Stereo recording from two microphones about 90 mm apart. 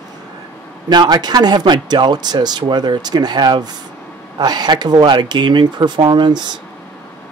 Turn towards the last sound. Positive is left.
turn(degrees=-55)  # may be behind; listen again after turning